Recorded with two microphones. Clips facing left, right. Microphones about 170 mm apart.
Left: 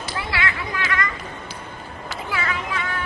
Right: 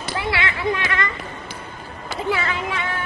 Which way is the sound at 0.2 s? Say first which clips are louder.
Right 4 dB; 25° right (ahead or behind).